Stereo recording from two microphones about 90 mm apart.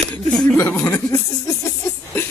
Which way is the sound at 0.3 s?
5° left (ahead or behind).